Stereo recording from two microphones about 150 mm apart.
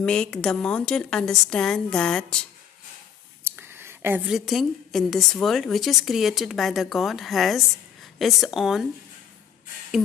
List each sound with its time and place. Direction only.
0.0 s speech: 5° left (ahead or behind)
3.4 s a sound: 15° right (ahead or behind)
4.3 s speech: centre (ahead or behind)